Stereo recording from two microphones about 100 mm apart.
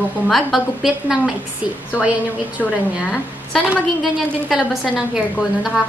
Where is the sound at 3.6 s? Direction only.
5° right (ahead or behind).